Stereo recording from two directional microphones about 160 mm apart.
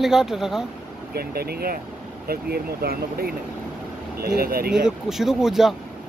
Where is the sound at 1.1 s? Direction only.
75° right (ahead or behind).